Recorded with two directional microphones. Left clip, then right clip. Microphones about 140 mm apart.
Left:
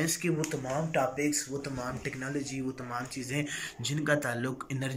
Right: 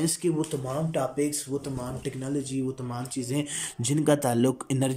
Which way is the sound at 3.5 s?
50° right (ahead or behind).